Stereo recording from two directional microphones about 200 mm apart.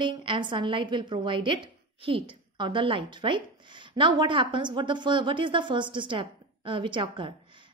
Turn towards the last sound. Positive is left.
turn(degrees=-25)  # may be behind; listen again after turning